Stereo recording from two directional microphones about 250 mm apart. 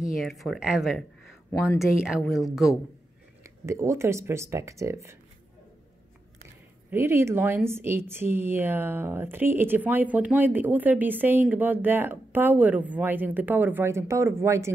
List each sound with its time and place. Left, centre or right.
0.1 s speech: centre
1.5 s speech: centre
1.8 s speech: centre
3.4 s speech: centre
6.9 s speech: centre